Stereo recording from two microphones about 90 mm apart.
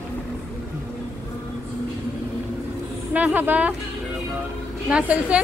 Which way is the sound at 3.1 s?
20° right (ahead or behind).